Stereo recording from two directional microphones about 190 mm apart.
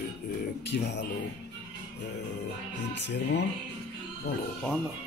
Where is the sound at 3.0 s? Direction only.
65° left (ahead or behind).